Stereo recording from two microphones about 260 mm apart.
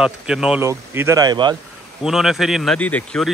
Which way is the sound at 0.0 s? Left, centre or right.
Centre.